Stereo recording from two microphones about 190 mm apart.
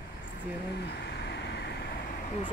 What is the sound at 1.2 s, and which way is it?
Vehicle, 65° left (ahead or behind).